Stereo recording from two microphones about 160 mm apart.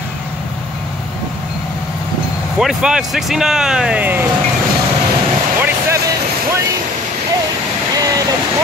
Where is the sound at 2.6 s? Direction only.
5° right (ahead or behind).